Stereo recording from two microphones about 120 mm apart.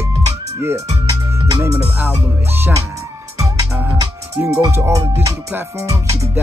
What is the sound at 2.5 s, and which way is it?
Music, 20° right (ahead or behind).